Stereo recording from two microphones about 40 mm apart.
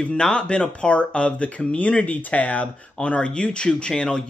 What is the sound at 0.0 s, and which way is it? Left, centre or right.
Speech, left.